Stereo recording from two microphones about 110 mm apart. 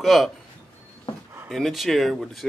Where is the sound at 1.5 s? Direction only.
Centre (ahead or behind).